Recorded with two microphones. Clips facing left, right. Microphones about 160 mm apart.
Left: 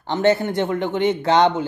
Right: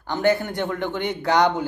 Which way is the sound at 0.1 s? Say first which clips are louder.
Left 3 dB; 25° left (ahead or behind).